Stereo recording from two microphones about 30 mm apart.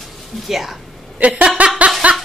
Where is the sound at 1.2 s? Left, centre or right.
Right.